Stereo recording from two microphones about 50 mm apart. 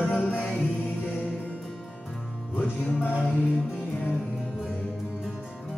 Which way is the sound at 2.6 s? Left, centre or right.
Left.